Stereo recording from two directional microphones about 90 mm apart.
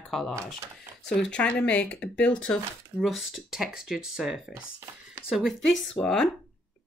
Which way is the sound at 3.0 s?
Centre (ahead or behind).